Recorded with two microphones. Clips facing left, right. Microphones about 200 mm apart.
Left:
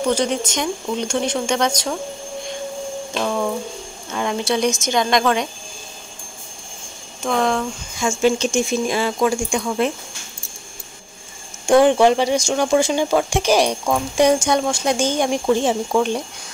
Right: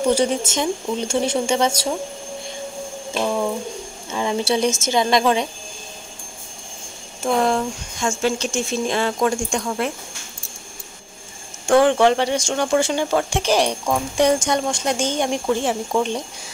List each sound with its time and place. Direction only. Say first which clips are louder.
0.0 s speech: right 1 dB; 10° right (ahead or behind)
3.2 s a sound: right 1 dB; 10° right (ahead or behind)
4.7 s speech: even; 5° right (ahead or behind)
7.2 s speech: right 1 dB; 5° right (ahead or behind)
8.0 s speech: left 4 dB; 15° left (ahead or behind)
11.6 s speech: left 2 dB; 15° left (ahead or behind)